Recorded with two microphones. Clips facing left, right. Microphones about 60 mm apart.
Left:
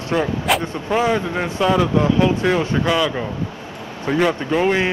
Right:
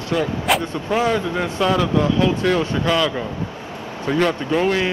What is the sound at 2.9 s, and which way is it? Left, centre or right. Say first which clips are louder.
A man's voice: even; centre.